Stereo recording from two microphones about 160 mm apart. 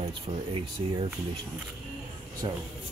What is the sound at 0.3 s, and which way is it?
Speech, 35° right (ahead or behind).